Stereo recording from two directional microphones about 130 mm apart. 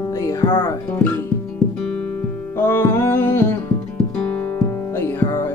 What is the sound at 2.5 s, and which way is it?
Music, 20° left (ahead or behind).